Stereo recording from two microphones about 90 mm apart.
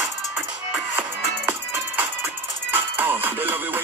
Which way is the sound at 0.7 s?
20° right (ahead or behind).